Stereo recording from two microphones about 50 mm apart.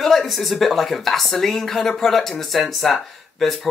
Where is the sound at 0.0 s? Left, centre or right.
Centre.